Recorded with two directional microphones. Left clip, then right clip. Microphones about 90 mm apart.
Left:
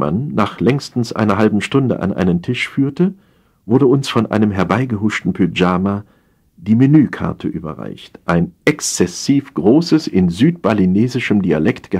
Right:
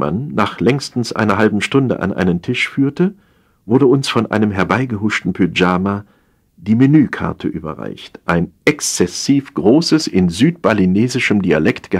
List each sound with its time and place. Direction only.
0.0 s speech: 30° right (ahead or behind)
9.4 s speech: 50° right (ahead or behind)